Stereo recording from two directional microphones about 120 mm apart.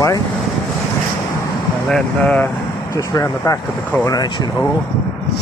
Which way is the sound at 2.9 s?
30° left (ahead or behind).